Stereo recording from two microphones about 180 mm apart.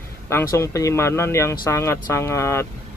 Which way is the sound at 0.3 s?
15° left (ahead or behind).